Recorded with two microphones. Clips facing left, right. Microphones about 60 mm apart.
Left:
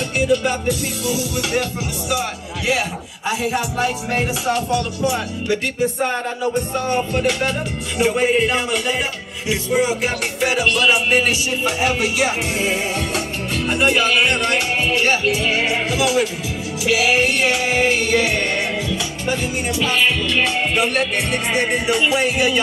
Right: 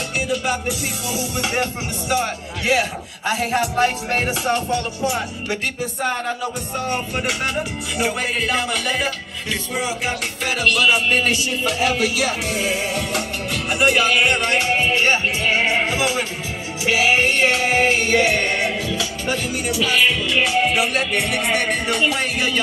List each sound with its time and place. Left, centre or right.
0.7 s music: right
3.3 s music: right
6.9 s music: centre
8.2 s speech: centre
11.8 s music: left
14.4 s speech: right
16.8 s music: right
19.2 s music: left
20.2 s music: centre